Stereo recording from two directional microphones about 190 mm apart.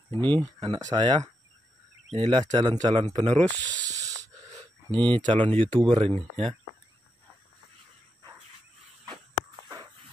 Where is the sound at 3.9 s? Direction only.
20° right (ahead or behind).